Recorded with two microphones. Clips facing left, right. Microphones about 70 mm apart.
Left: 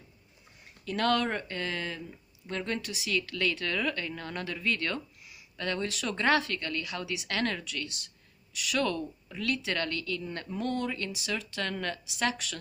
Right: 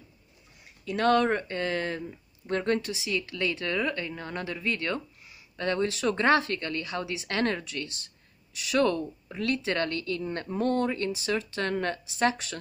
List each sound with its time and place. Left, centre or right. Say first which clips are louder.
0.8 s speech: right 5 dB; right
2.9 s speech: right 1 dB; right